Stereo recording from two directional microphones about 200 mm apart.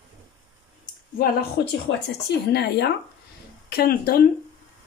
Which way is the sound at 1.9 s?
55° left (ahead or behind).